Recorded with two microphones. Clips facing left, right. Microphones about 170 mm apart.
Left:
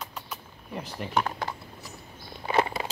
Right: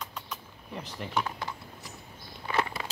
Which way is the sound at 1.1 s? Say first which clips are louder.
Left 4 dB; 60° left (ahead or behind).